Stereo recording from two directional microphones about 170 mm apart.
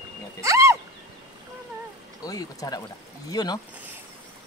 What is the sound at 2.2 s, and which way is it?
Speech, 20° left (ahead or behind).